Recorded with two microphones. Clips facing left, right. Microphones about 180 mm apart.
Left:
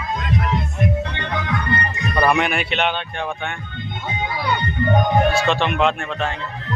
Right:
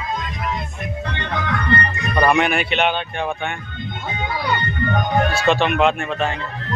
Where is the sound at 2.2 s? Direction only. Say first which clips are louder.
Right 2 dB; centre (ahead or behind).